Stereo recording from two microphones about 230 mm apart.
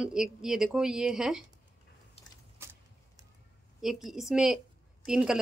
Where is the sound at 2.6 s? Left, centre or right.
Centre.